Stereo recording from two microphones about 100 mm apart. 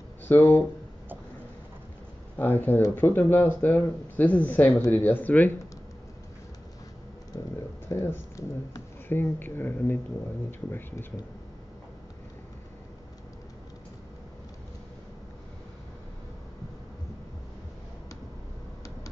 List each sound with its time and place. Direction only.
0.3 s speech: 20° left (ahead or behind)
2.3 s speech: 20° left (ahead or behind)
7.3 s speech: 40° left (ahead or behind)
7.9 s speech: 30° left (ahead or behind)